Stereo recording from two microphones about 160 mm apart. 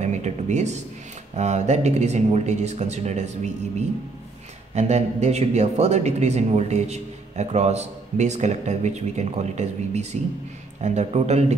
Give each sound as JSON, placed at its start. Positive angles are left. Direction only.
{"t": 0.0, "sound": "a man's voice", "side_deg": -45}
{"t": 4.7, "sound": "a man's voice", "side_deg": -45}